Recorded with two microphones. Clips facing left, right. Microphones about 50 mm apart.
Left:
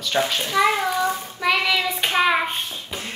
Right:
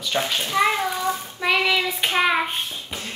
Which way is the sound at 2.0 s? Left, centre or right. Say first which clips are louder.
Left 2 dB; centre.